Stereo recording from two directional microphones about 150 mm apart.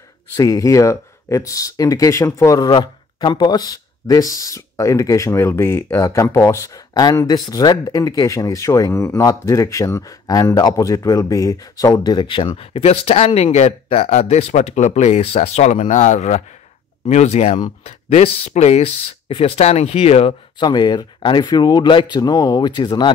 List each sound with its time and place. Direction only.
0.4 s speech: 20° left (ahead or behind)